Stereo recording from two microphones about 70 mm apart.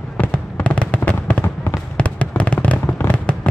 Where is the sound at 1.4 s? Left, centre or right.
Left.